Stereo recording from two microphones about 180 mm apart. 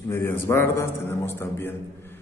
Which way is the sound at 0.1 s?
15° left (ahead or behind).